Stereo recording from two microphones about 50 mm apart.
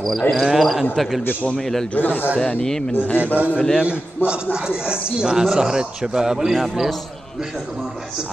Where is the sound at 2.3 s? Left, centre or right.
Centre.